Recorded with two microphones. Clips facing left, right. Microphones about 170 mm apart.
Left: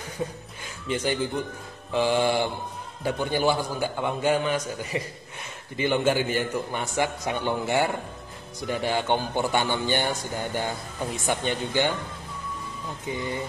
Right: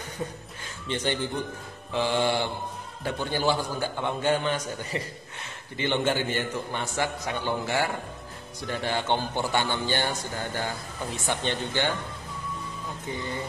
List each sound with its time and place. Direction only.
0.8 s a man's voice: 5° left (ahead or behind)